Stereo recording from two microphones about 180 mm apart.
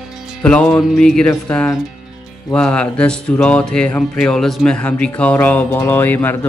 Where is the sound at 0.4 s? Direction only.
5° left (ahead or behind).